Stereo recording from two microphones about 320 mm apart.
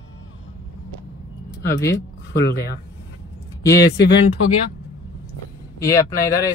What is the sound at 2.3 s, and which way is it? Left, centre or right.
Speech, left.